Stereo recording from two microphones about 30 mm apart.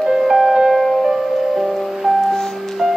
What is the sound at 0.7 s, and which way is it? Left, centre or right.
Music, centre.